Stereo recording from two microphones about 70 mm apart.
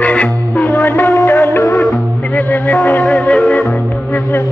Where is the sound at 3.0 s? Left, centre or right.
Centre.